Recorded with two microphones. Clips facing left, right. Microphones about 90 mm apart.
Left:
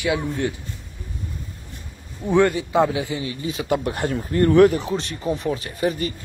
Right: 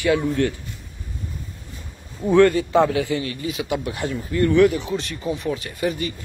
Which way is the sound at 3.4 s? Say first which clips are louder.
Left 5 dB; 40° left (ahead or behind).